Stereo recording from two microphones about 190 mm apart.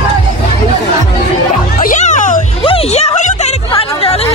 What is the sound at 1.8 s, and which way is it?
Music, 40° left (ahead or behind).